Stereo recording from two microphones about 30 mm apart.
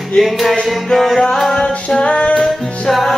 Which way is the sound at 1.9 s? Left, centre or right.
Left.